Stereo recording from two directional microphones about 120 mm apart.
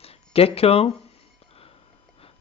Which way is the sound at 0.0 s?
55° left (ahead or behind).